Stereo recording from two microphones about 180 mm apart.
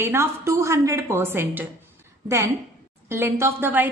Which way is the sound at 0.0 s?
15° right (ahead or behind).